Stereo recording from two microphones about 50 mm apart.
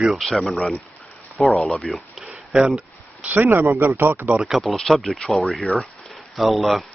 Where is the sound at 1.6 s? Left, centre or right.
Centre.